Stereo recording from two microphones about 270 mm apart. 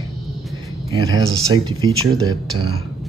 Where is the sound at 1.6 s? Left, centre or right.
Centre.